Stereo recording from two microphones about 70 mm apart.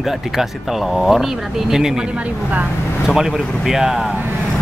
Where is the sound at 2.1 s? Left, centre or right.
Right.